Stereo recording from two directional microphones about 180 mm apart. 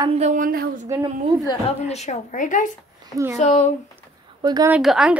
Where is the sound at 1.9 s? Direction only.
40° left (ahead or behind).